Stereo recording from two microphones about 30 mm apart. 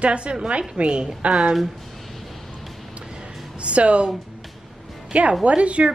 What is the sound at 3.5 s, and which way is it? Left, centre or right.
Speech, right.